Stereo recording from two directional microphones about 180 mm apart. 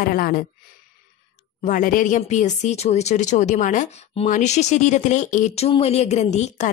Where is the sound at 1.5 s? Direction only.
45° left (ahead or behind).